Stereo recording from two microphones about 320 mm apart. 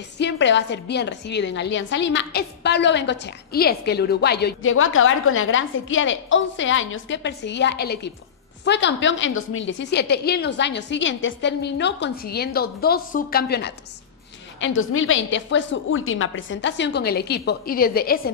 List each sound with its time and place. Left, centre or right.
0.2 s a woman's voice: left